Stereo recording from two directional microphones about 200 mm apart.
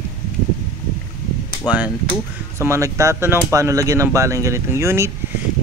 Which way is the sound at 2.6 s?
15° right (ahead or behind).